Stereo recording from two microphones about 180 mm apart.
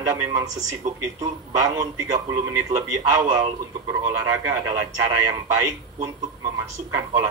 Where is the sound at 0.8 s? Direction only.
40° right (ahead or behind).